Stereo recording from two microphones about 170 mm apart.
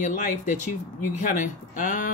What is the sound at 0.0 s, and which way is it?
Speech, 45° left (ahead or behind).